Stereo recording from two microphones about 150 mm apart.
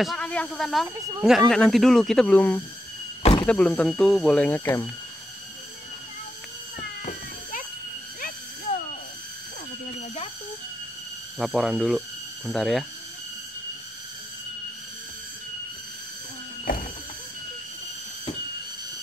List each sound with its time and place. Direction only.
0.0 s speech: 5° left (ahead or behind)
3.2 s door: 40° left (ahead or behind)
3.4 s speech: 10° left (ahead or behind)
6.8 s a sound: 70° left (ahead or behind)
11.3 s speech: centre (ahead or behind)
16.7 s a sound: 75° left (ahead or behind)